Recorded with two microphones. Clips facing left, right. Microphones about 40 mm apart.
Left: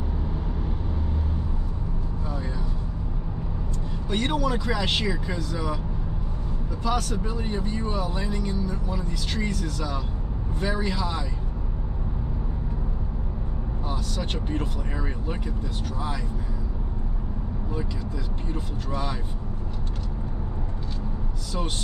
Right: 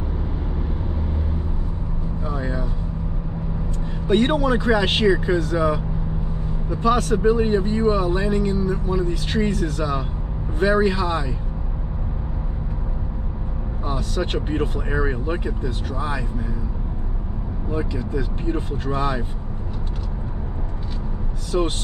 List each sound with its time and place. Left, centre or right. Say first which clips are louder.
2.2 s vehicle: right 8 dB; right
4.1 s speech: right 7 dB; right
13.8 s speech: right 7 dB; right
17.6 s speech: right 8 dB; right
21.5 s speech: right 9 dB; right